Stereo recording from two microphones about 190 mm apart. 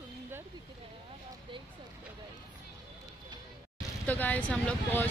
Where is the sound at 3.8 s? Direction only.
10° left (ahead or behind).